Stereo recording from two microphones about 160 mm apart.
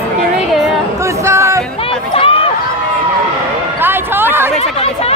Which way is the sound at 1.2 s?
20° right (ahead or behind).